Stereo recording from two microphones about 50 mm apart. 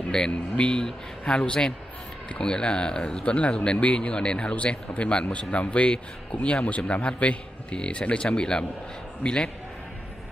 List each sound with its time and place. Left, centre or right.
0.6 s speech: centre